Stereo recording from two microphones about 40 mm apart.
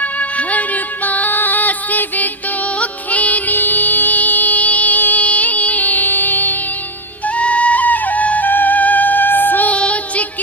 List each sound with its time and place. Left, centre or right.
0.0 s music: left
7.2 s music: left
9.7 s music: left